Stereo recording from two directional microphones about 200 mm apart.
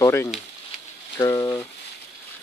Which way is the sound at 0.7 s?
Centre (ahead or behind).